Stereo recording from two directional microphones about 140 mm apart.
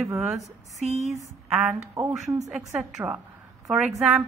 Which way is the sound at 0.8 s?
55° right (ahead or behind).